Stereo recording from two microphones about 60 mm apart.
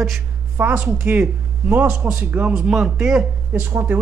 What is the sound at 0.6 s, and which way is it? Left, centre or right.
Speech, right.